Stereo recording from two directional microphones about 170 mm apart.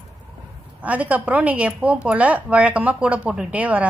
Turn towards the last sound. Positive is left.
turn(degrees=-10)  # may be behind; listen again after turning